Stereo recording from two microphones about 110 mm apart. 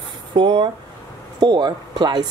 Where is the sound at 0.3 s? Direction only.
45° right (ahead or behind).